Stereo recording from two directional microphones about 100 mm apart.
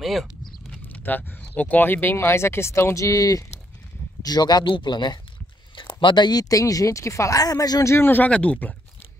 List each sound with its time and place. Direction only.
0.0 s speech: centre (ahead or behind)
0.8 s speech: 20° left (ahead or behind); by 7.9 s 35° left (ahead or behind)
7.9 s speech: 20° left (ahead or behind)